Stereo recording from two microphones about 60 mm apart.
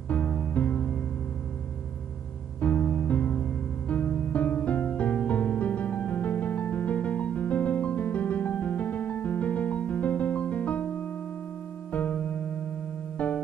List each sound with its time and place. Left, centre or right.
0.5 s music: left
2.6 s music: left
11.9 s music: left